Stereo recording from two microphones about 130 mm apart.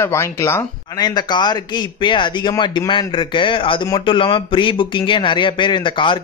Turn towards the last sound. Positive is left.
turn(degrees=40)  # may be behind; listen again after turning